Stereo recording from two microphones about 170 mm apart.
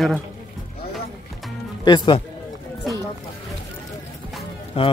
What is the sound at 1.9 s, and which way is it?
Speech, 25° left (ahead or behind).